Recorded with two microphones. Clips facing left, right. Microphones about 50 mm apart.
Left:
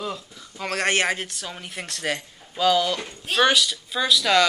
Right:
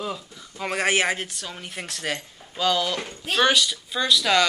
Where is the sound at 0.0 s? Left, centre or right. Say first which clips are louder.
Even; centre.